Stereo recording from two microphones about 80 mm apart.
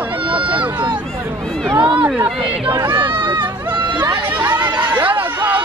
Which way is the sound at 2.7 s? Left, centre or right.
Right.